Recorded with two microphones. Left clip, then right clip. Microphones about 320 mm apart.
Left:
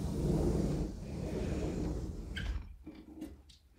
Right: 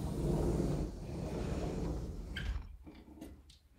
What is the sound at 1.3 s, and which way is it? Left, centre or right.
Vehicle, centre.